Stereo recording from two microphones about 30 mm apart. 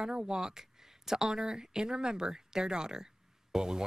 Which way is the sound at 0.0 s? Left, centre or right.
Right.